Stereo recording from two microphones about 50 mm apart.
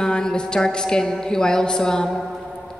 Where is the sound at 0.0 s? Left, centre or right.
Centre.